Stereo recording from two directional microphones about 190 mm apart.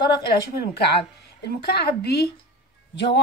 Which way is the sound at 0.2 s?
60° left (ahead or behind).